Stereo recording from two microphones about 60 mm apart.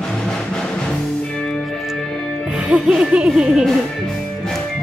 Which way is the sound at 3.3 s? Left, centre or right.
Centre.